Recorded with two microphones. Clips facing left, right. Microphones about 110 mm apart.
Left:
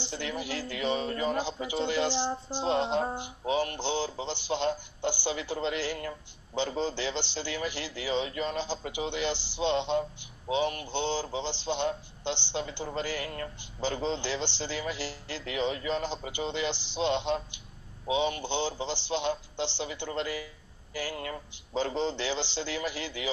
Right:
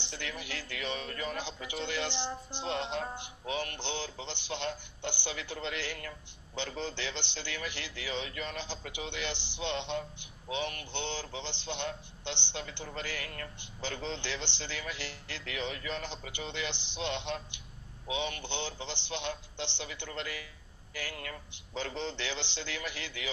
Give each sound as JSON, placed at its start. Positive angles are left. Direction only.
{"t": 0.0, "sound": "a sound", "side_deg": 10}
{"t": 0.5, "sound": "speech", "side_deg": 10}
{"t": 0.7, "sound": "a man's voice", "side_deg": 20}
{"t": 1.9, "sound": "speech", "side_deg": 10}
{"t": 2.1, "sound": "speech", "side_deg": 40}
{"t": 3.5, "sound": "speech", "side_deg": 10}
{"t": 11.7, "sound": "a man's voice", "side_deg": 20}
{"t": 12.3, "sound": "speech", "side_deg": 10}
{"t": 17.3, "sound": "a man's voice", "side_deg": 20}